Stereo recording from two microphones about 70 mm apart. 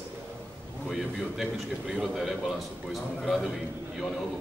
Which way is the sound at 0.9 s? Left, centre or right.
Centre.